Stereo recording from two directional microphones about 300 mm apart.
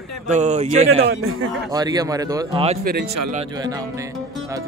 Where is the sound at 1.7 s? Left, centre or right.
Centre.